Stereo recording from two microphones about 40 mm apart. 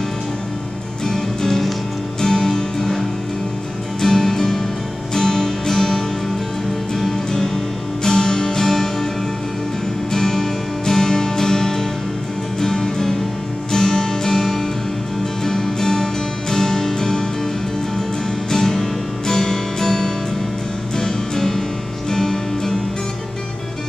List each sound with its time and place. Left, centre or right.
1.0 s music: centre
4.0 s music: centre
10.1 s music: centre
18.5 s music: centre